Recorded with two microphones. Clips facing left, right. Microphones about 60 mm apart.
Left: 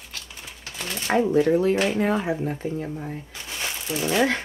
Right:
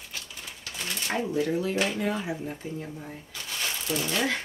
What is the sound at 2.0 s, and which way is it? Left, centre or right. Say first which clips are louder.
Speech: left 6 dB; left.